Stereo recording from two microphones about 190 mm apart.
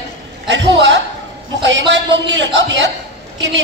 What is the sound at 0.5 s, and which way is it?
A man's voice, 75° right (ahead or behind).